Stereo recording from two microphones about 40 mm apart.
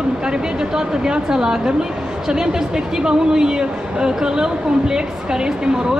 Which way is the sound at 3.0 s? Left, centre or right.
Centre.